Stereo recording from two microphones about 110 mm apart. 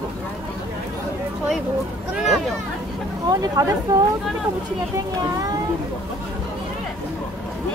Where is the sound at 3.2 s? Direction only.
35° right (ahead or behind).